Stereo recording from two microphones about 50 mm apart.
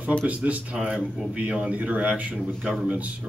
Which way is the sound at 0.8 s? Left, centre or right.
Centre.